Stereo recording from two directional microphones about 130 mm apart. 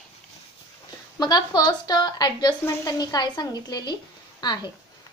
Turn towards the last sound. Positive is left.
turn(degrees=35)  # may be behind; listen again after turning